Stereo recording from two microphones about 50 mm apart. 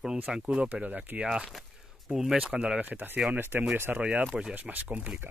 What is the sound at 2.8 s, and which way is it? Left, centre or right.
Speech, right.